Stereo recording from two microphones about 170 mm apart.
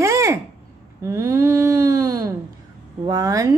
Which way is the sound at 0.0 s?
15° right (ahead or behind).